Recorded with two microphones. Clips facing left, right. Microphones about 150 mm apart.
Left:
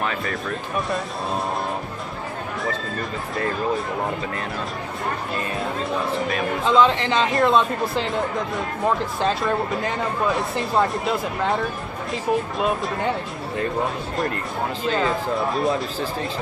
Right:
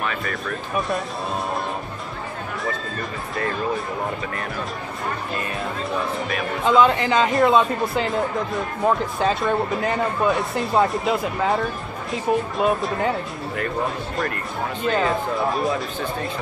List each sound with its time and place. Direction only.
0.0 s music: 30° left (ahead or behind)
0.7 s speech: centre (ahead or behind)
6.6 s speech: 5° right (ahead or behind)
14.9 s speech: centre (ahead or behind)